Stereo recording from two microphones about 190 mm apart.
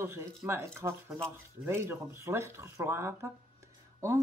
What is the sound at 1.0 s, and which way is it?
Speech, 5° left (ahead or behind).